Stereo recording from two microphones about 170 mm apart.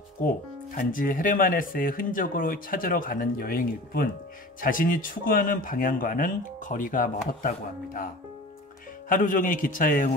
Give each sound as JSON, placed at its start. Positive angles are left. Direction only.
{"t": 0.7, "sound": "speech", "side_deg": 55}
{"t": 9.1, "sound": "speech", "side_deg": 50}